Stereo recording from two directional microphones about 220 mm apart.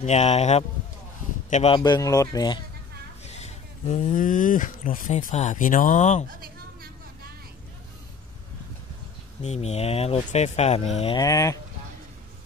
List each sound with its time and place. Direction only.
0.0 s speech: 30° left (ahead or behind)
1.8 s speech: 15° left (ahead or behind)
3.3 s speech: 30° left (ahead or behind)
6.2 s a sound: 40° right (ahead or behind)
9.4 s speech: 30° left (ahead or behind)
11.1 s speech: 15° left (ahead or behind)